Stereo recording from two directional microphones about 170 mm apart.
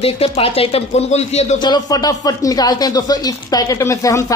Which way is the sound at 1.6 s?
25° left (ahead or behind).